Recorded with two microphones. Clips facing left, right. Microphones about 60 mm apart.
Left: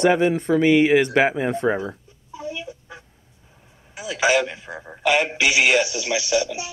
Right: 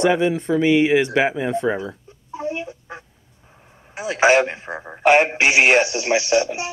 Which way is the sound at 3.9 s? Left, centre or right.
Right.